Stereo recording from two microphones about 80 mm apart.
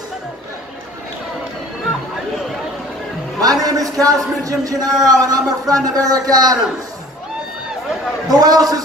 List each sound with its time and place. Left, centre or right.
3.3 s a man's voice: right
8.3 s a man's voice: right